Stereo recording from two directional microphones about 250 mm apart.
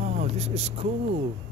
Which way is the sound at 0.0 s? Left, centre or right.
Right.